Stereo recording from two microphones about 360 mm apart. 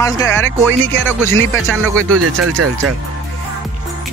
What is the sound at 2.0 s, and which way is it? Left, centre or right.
Speech, right.